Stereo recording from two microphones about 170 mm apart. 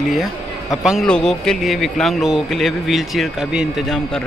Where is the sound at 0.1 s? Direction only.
Centre (ahead or behind).